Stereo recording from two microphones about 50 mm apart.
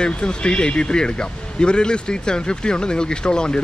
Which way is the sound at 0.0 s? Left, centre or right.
Centre.